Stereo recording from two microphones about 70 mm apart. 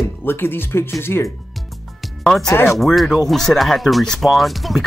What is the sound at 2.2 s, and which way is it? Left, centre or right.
Speech, centre.